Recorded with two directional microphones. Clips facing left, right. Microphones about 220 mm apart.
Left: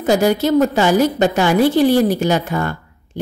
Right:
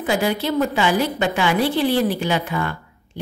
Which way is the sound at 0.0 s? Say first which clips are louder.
Left 6 dB; 40° left (ahead or behind).